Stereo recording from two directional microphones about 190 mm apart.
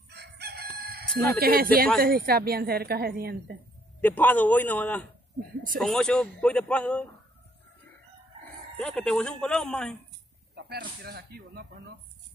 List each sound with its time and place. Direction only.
0.1 s chicken: 60° right (ahead or behind)
1.4 s a woman's voice: 50° right (ahead or behind)
4.0 s a man's voice: 10° left (ahead or behind)
8.7 s speech: centre (ahead or behind)
10.5 s speech: 55° right (ahead or behind)